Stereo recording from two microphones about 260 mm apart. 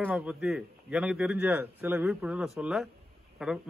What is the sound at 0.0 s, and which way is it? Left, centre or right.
A man's voice, centre.